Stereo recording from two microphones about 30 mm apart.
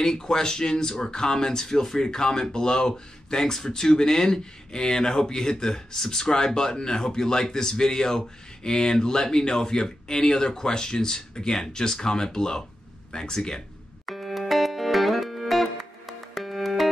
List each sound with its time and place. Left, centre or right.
0.0 s speech: left
2.0 s speech: left
14.0 s music: centre